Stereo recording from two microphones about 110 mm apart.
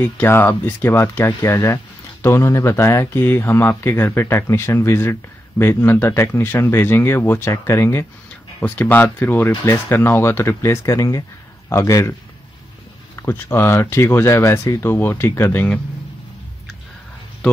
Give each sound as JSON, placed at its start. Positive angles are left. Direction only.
{"t": 0.0, "sound": "speech", "side_deg": 20}